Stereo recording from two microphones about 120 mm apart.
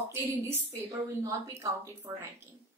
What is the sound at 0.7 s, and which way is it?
A woman's voice, 25° right (ahead or behind).